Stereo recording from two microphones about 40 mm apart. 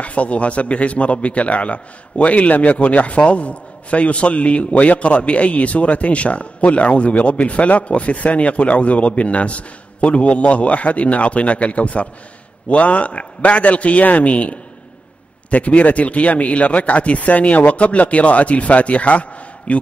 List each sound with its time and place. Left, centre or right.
0.0 s a man's voice: left